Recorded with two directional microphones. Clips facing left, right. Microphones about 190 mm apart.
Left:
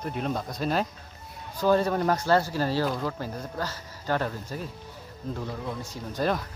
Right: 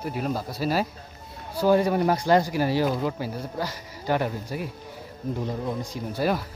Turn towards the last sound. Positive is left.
turn(degrees=-10)  # may be behind; listen again after turning